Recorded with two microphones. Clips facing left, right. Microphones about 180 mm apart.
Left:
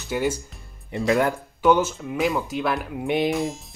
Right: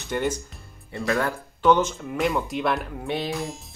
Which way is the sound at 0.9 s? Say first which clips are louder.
Left 4 dB; 20° left (ahead or behind).